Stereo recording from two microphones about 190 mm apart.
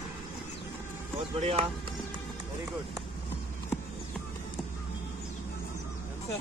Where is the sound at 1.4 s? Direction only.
30° right (ahead or behind).